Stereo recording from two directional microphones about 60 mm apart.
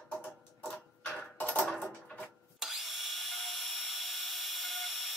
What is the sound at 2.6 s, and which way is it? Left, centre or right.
Drill, centre.